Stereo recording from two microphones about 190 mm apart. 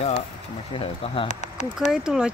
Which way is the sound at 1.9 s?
5° right (ahead or behind).